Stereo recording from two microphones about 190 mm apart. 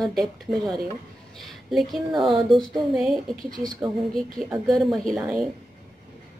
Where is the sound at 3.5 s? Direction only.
20° right (ahead or behind).